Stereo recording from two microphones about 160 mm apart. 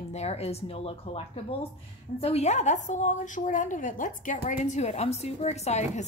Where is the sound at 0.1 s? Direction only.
40° left (ahead or behind).